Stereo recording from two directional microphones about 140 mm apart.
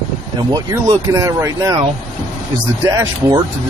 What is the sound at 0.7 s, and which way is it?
Speech, 25° right (ahead or behind).